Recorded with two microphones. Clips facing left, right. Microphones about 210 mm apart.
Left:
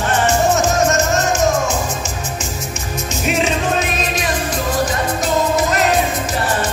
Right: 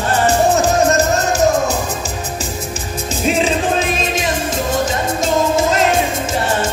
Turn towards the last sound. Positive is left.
turn(degrees=-25)  # may be behind; listen again after turning